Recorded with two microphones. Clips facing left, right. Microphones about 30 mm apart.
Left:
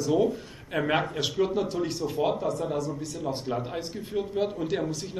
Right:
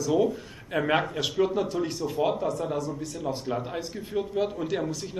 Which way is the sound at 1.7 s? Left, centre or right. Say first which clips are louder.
Even; left.